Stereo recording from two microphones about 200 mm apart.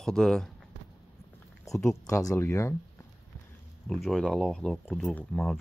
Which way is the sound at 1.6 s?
15° left (ahead or behind).